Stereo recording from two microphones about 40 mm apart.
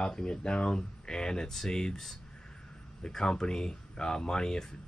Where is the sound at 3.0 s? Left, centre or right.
Centre.